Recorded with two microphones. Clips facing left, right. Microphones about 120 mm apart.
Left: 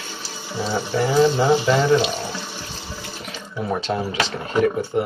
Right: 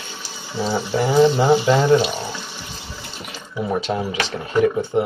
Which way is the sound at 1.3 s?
15° right (ahead or behind).